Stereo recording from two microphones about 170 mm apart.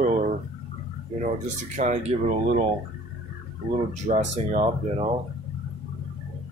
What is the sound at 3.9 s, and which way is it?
Speech, 45° right (ahead or behind).